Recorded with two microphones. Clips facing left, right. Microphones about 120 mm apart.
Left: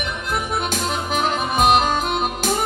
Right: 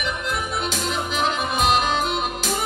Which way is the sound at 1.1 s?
45° left (ahead or behind).